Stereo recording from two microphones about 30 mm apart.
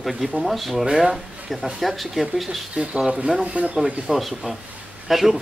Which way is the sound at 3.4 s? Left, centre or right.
Right.